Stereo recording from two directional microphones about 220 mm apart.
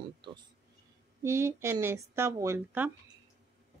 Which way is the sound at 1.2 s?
10° right (ahead or behind).